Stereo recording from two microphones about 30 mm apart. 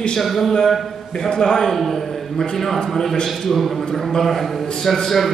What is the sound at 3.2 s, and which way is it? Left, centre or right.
A man's voice, centre.